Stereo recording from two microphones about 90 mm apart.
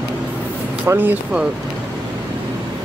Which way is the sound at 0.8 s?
20° right (ahead or behind).